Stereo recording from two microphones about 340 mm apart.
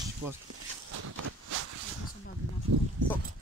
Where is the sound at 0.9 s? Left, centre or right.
Right.